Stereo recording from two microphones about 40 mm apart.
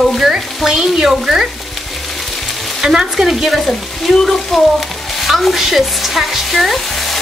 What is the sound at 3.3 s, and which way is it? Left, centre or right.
Frying, centre.